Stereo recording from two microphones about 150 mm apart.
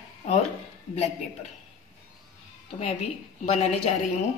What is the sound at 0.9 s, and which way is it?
Speech, 45° left (ahead or behind).